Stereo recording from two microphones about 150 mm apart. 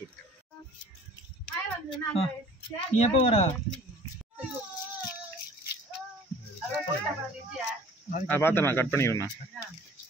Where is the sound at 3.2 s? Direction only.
40° left (ahead or behind).